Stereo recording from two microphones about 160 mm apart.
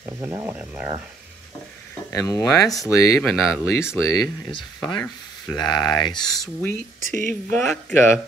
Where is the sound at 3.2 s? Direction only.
Centre (ahead or behind).